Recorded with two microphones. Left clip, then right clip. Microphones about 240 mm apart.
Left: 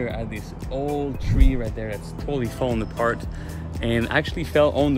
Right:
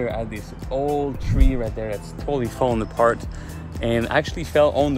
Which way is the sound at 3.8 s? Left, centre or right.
Centre.